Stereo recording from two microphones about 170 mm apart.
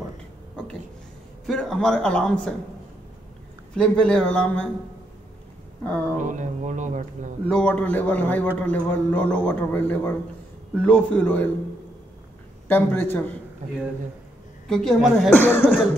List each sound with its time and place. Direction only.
1.4 s speech: centre (ahead or behind)
3.7 s speech: 5° left (ahead or behind)
6.1 s speech: 45° right (ahead or behind)
7.4 s a man's voice: 5° left (ahead or behind)
12.6 s a man's voice: 10° left (ahead or behind)
14.7 s speech: centre (ahead or behind)